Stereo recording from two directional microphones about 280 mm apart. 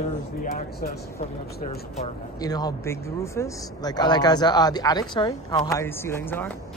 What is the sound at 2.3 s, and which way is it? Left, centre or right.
Speech, centre.